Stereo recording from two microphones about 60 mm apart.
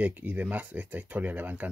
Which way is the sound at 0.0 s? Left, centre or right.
Right.